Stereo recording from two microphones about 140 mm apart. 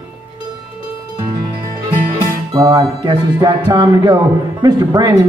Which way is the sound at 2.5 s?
30° right (ahead or behind).